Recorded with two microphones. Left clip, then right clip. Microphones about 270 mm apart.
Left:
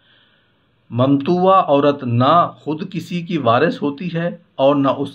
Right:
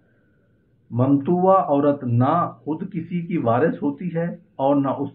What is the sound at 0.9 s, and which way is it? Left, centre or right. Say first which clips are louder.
Speech: left 4 dB; left.